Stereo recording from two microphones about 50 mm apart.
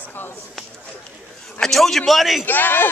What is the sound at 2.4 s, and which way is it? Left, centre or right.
Speech, left.